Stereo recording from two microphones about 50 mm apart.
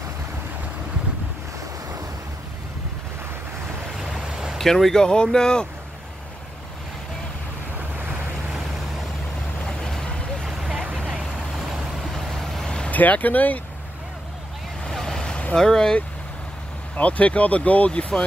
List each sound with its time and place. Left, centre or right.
4.0 s a sound: centre
4.6 s speech: centre
9.7 s vehicle: centre
10.4 s vehicle: centre
12.4 s vehicle: centre
12.9 s speech: left
14.9 s vehicle: centre
15.5 s speech: centre
16.9 s speech: left